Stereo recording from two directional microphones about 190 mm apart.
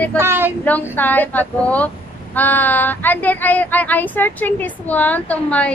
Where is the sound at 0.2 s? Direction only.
10° right (ahead or behind).